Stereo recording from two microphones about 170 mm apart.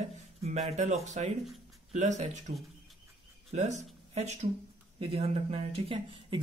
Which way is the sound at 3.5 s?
45° right (ahead or behind).